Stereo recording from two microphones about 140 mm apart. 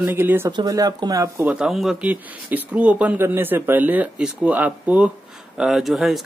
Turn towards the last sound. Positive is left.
turn(degrees=0)  # may be behind; listen again after turning